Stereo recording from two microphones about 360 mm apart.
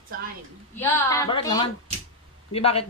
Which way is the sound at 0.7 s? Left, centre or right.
Centre.